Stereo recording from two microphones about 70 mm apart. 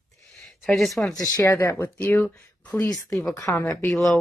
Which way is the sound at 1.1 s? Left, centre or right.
Left.